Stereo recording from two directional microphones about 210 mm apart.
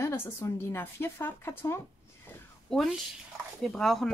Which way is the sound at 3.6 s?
Centre (ahead or behind).